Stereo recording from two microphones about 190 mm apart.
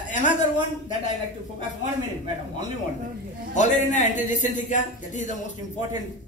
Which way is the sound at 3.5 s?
40° left (ahead or behind).